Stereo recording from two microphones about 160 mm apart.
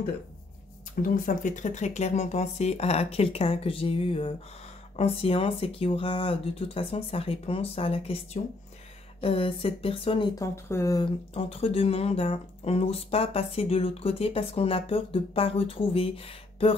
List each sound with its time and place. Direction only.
1.0 s speech: 60° left (ahead or behind); by 10.3 s 35° left (ahead or behind)
10.4 s speech: 20° left (ahead or behind)
11.3 s speech: 35° left (ahead or behind)